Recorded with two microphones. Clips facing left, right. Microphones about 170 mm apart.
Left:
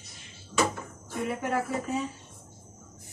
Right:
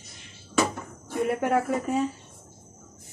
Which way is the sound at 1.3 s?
55° right (ahead or behind).